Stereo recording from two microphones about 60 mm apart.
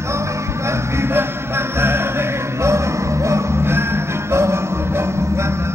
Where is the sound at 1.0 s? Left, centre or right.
Right.